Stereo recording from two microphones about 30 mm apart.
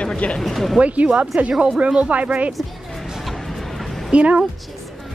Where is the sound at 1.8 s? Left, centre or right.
Right.